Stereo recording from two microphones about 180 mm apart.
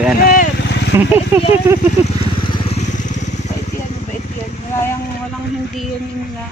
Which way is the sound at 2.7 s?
40° left (ahead or behind).